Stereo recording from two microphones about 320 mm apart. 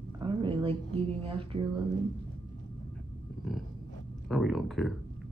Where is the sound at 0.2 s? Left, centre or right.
Centre.